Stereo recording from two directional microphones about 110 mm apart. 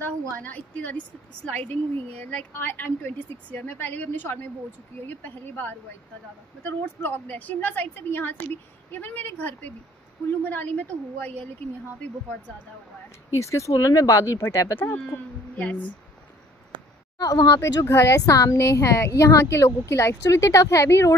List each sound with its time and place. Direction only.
0.0 s a woman's voice: 15° left (ahead or behind)
13.4 s speech: 30° left (ahead or behind)
15.5 s speech: 15° left (ahead or behind)
17.2 s speech: 35° left (ahead or behind)